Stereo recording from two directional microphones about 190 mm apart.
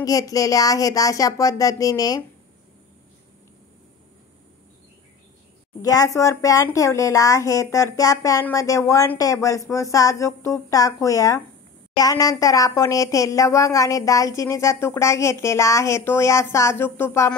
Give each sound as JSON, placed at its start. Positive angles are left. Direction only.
{"t": 0.0, "sound": "speech", "side_deg": 20}
{"t": 5.8, "sound": "speech", "side_deg": 15}